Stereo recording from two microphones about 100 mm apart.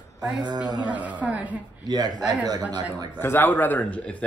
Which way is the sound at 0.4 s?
40° right (ahead or behind).